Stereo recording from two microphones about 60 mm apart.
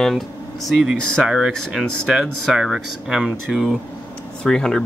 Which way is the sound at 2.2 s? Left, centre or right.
Centre.